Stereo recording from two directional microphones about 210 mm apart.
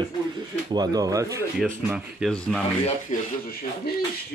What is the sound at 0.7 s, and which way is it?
Speech, 15° right (ahead or behind).